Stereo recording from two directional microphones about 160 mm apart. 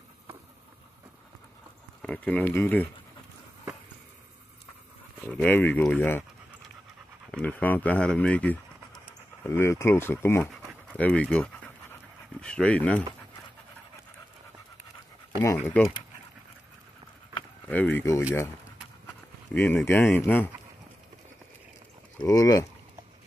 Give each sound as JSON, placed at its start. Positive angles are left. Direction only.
{"t": 2.0, "sound": "speech", "side_deg": 10}
{"t": 5.3, "sound": "speech", "side_deg": 10}
{"t": 7.2, "sound": "speech", "side_deg": 10}
{"t": 15.4, "sound": "speech", "side_deg": 15}
{"t": 17.6, "sound": "speech", "side_deg": 10}
{"t": 19.5, "sound": "speech", "side_deg": 15}
{"t": 22.3, "sound": "speech", "side_deg": 20}